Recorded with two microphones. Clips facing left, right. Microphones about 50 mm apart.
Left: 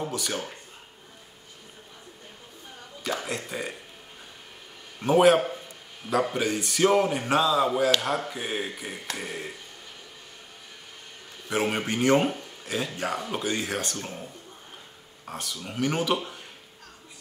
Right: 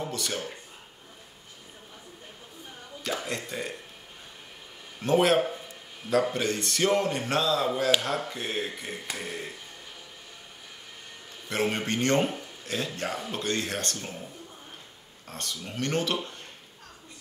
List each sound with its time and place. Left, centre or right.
0.0 s speech: centre
3.0 s speech: centre
5.0 s speech: centre
11.4 s speech: centre
15.2 s speech: centre